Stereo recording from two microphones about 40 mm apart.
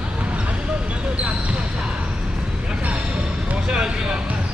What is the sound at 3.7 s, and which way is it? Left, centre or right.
Vehicle, centre.